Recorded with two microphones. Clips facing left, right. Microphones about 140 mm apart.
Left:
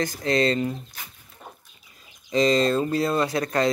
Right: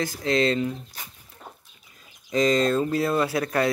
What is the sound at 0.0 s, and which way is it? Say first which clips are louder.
Mantra: left 1 dB; centre (ahead or behind).